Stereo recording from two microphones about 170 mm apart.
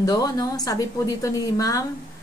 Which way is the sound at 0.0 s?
20° left (ahead or behind).